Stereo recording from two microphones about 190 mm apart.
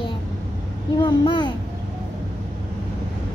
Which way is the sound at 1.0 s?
25° left (ahead or behind).